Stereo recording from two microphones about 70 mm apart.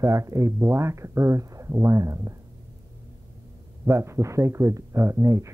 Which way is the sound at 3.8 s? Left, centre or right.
Right.